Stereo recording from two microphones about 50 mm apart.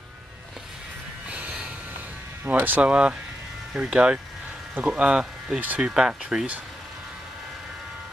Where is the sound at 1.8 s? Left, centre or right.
Right.